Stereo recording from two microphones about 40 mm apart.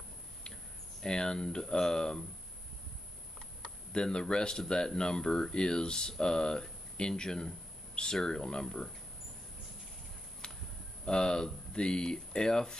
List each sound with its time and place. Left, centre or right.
1.0 s speech: centre
3.9 s speech: left
10.4 s a sound: left
11.1 s speech: centre